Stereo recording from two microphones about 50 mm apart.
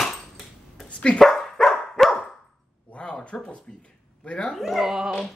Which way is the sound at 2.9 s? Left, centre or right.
Left.